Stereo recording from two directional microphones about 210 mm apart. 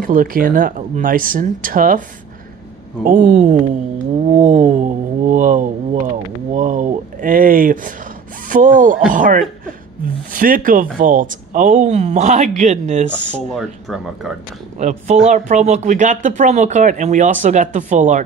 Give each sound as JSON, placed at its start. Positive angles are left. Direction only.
{"t": 0.0, "sound": "speech", "side_deg": -40}
{"t": 4.3, "sound": "a sound", "side_deg": -35}
{"t": 6.5, "sound": "speech", "side_deg": -35}
{"t": 13.1, "sound": "speech", "side_deg": 5}
{"t": 14.8, "sound": "speech", "side_deg": -35}